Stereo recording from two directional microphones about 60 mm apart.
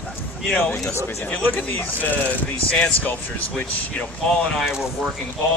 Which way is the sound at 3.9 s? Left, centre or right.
Centre.